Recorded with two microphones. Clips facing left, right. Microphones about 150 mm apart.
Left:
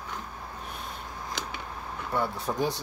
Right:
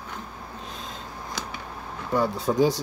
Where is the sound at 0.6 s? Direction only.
90° right.